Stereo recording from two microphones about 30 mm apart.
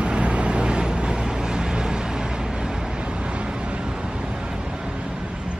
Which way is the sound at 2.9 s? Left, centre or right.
Right.